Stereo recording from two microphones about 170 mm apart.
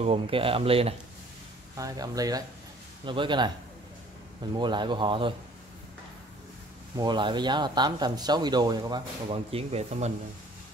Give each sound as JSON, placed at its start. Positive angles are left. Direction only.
{"t": 0.0, "sound": "speech", "side_deg": -35}
{"t": 1.8, "sound": "speech", "side_deg": -20}
{"t": 4.6, "sound": "speech", "side_deg": -25}
{"t": 7.0, "sound": "speech", "side_deg": -25}